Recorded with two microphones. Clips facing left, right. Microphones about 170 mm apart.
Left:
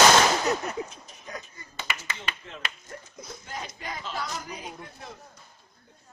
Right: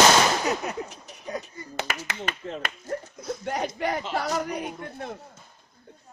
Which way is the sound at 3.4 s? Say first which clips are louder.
Right 12 dB; 65° right (ahead or behind).